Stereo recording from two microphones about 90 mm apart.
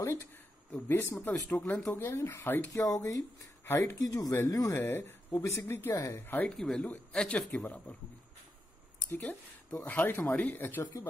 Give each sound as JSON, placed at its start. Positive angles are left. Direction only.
{"t": 0.0, "sound": "speech", "side_deg": 35}
{"t": 2.7, "sound": "speech", "side_deg": 40}
{"t": 3.6, "sound": "speech", "side_deg": 25}
{"t": 4.0, "sound": "speech", "side_deg": 40}
{"t": 4.7, "sound": "speech", "side_deg": 25}
{"t": 5.3, "sound": "speech", "side_deg": 35}
{"t": 5.6, "sound": "speech", "side_deg": 25}
{"t": 6.2, "sound": "speech", "side_deg": 20}
{"t": 6.5, "sound": "a man's voice", "side_deg": 5}
{"t": 9.2, "sound": "speech", "side_deg": 15}
{"t": 10.8, "sound": "speech", "side_deg": 35}